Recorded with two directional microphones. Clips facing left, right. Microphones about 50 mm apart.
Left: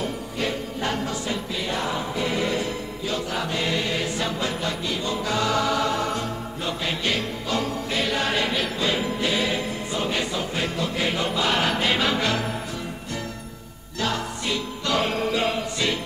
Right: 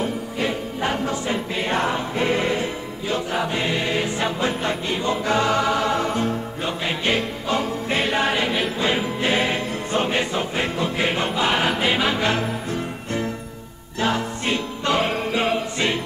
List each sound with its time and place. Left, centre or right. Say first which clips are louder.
0.0 s music: right 3 dB; centre
12.3 s music: right 3 dB; right